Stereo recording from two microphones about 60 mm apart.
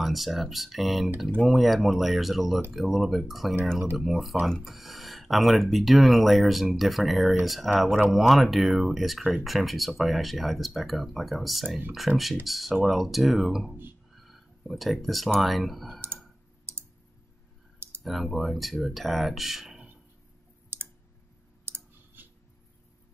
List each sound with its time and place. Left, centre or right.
0.0 s speech: centre
14.1 s a sound: centre
15.4 s speech: centre
18.0 s speech: centre
21.6 s clicking: right